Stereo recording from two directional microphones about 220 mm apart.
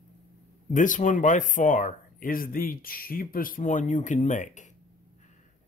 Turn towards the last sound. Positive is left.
turn(degrees=35)  # may be behind; listen again after turning